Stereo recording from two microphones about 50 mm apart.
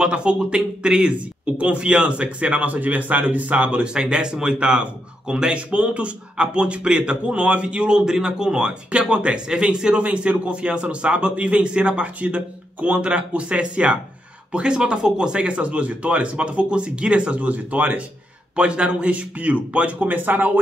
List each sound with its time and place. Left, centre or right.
0.0 s speech: centre